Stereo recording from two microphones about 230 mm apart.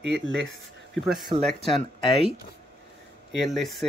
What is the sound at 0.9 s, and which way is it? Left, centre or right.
Speech, centre.